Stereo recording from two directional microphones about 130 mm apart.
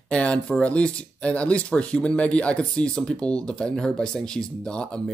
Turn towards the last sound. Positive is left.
turn(degrees=5)  # may be behind; listen again after turning